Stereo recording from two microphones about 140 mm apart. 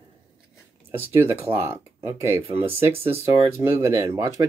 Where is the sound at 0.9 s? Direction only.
15° right (ahead or behind).